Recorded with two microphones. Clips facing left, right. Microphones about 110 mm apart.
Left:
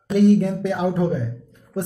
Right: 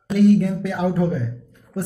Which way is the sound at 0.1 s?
25° left (ahead or behind).